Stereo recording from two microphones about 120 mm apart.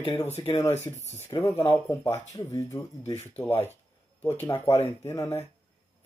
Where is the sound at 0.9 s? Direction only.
70° left (ahead or behind).